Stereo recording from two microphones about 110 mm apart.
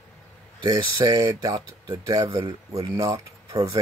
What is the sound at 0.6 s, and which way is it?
Speech, 35° right (ahead or behind).